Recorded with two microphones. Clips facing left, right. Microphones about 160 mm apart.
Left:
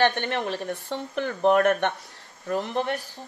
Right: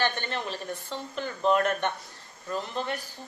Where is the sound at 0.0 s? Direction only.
70° left (ahead or behind).